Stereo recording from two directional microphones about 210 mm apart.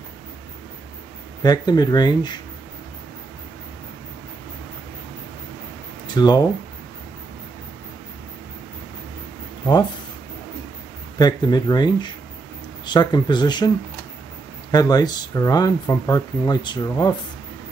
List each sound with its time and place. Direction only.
1.4 s speech: 20° left (ahead or behind)
6.0 s speech: 20° left (ahead or behind)
11.1 s speech: 20° left (ahead or behind)
14.7 s speech: 20° left (ahead or behind)